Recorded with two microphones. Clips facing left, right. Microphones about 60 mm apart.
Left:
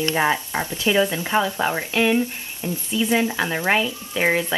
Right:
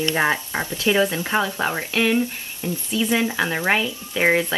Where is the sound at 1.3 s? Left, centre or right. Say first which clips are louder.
Left 2 dB; centre.